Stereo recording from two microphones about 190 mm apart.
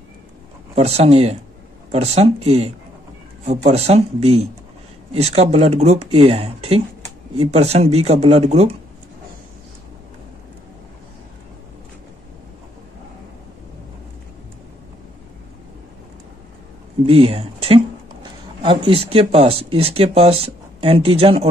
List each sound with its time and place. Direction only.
0.7 s speech: 35° right (ahead or behind)
17.0 s speech: 30° right (ahead or behind)